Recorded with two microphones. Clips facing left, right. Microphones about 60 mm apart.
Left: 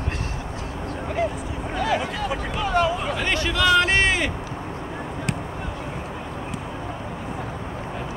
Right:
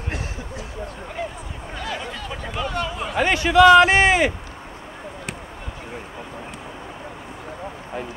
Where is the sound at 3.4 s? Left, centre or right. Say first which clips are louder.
Right 9 dB; right.